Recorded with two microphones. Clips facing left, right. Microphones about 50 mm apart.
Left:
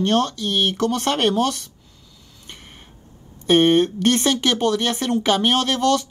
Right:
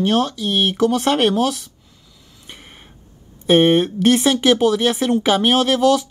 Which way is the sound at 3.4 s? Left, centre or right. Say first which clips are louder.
Right 2 dB; centre.